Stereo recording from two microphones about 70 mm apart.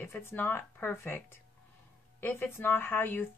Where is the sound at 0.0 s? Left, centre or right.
Left.